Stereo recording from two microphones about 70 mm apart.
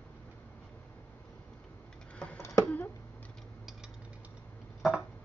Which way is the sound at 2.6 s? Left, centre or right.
Left.